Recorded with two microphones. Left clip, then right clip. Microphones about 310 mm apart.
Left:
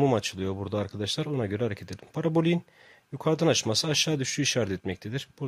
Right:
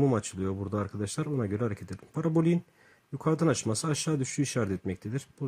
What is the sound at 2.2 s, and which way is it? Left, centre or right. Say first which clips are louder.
Speech: left 2 dB; centre.